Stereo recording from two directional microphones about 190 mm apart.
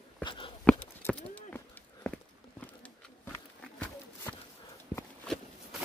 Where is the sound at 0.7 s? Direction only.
5° left (ahead or behind).